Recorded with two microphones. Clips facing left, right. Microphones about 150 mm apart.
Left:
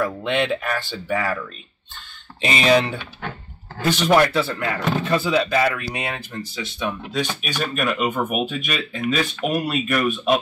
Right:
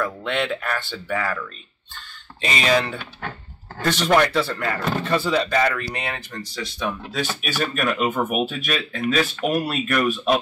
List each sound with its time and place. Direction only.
0.0 s speech: 20° left (ahead or behind)
2.4 s speech: 20° left (ahead or behind)
3.0 s speech: centre (ahead or behind)